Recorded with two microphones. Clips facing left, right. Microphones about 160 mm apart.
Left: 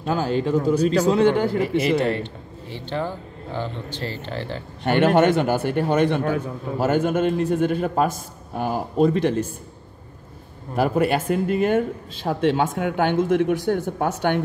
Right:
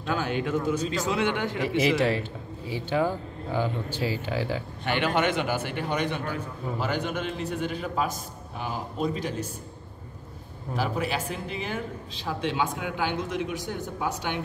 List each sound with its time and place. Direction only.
0.0 s speech: 35° left (ahead or behind)
1.6 s speech: centre (ahead or behind)
4.8 s a man's voice: 45° left (ahead or behind)
10.8 s a man's voice: 55° left (ahead or behind)